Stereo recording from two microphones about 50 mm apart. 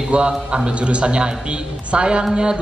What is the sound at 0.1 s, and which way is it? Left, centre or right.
A man's voice, right.